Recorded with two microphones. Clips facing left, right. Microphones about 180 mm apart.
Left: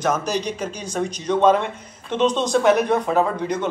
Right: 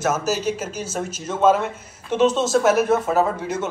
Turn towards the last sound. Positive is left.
turn(degrees=-5)  # may be behind; listen again after turning